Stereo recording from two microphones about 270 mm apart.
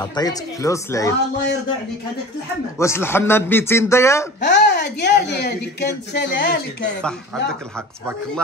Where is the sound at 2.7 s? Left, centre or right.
Centre.